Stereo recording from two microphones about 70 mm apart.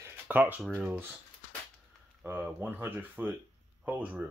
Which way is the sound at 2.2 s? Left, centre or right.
Right.